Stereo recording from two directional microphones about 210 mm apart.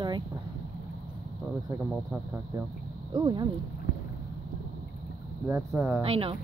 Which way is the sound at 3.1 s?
20° right (ahead or behind).